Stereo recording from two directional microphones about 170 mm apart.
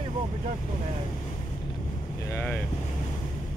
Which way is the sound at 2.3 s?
10° left (ahead or behind).